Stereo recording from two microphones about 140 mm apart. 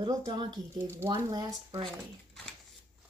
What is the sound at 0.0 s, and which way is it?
Female singing, 30° right (ahead or behind).